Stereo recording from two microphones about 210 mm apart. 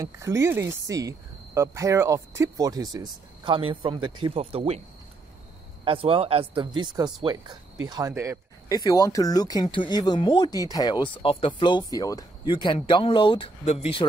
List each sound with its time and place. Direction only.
0.0 s speech: 15° right (ahead or behind)
5.9 s speech: 25° right (ahead or behind)
8.6 s speech: 20° left (ahead or behind)